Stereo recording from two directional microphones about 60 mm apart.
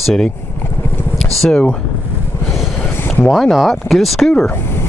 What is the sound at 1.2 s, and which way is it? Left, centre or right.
Vehicle, centre.